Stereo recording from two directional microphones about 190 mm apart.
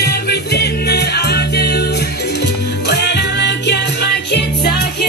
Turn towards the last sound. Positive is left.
turn(degrees=60)  # may be behind; listen again after turning